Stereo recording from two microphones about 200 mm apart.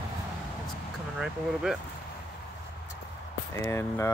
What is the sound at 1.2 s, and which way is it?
Speech, centre (ahead or behind).